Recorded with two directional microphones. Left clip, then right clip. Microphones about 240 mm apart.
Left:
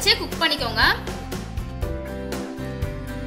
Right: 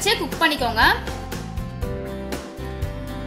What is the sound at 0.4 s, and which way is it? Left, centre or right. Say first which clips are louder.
Speech: right 2 dB; right.